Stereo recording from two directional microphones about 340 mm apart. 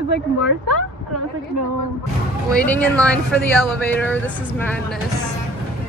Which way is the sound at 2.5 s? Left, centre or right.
Centre.